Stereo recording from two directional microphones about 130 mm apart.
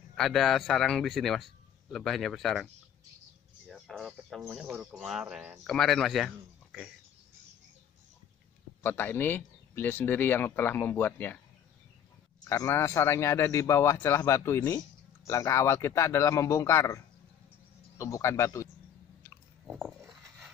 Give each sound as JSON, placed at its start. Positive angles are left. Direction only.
{"t": 0.1, "sound": "a man's voice", "side_deg": 0}
{"t": 3.6, "sound": "a sound", "side_deg": 0}
{"t": 4.5, "sound": "a man's voice", "side_deg": -10}
{"t": 8.8, "sound": "speech", "side_deg": 15}
{"t": 12.4, "sound": "a man's voice", "side_deg": 20}
{"t": 19.7, "sound": "dog", "side_deg": 0}